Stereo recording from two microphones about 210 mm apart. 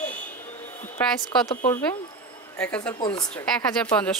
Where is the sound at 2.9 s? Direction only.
20° left (ahead or behind).